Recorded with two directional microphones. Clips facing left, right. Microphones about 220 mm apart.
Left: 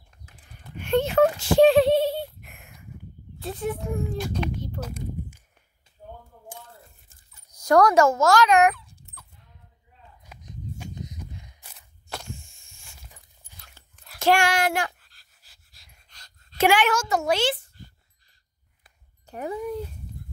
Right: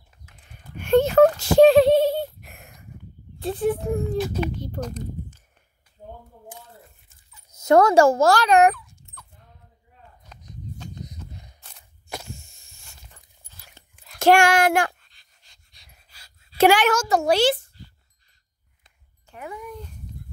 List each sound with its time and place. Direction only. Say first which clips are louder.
0.8 s a sound: right 5 dB; 45° right (ahead or behind)
3.3 s a child's voice: right 6 dB; 35° right (ahead or behind)
4.2 s a child's voice: right 4 dB; 5° right (ahead or behind)
4.7 s speech: right 3 dB; 10° left (ahead or behind)
6.0 s a sound: right 2 dB; 20° right (ahead or behind)
7.5 s a woman's voice: right 2 dB; 25° right (ahead or behind)
8.7 s dog: right 3 dB; 35° left (ahead or behind)
10.3 s a sound: left 2 dB; 10° left (ahead or behind)
12.1 s a sound: right 2 dB; 15° right (ahead or behind)
12.9 s dog: left 2 dB; 10° left (ahead or behind)
14.2 s speech: right 5 dB; 50° right (ahead or behind)
15.0 s pant: even; 5° left (ahead or behind)
16.5 s a woman's voice: right 4 dB; 35° right (ahead or behind)
19.2 s speech: left 6 dB; 35° left (ahead or behind)